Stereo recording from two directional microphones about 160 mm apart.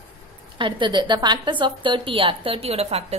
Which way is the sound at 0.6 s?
30° right (ahead or behind).